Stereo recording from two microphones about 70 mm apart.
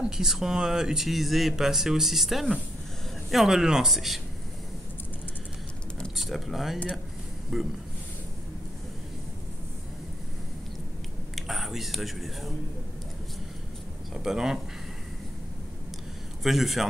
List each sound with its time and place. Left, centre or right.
0.0 s speech: centre
6.1 s speech: centre
11.3 s speech: centre
14.1 s speech: centre
16.4 s speech: centre